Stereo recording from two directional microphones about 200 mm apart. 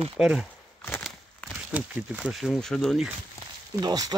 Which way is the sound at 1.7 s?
5° right (ahead or behind).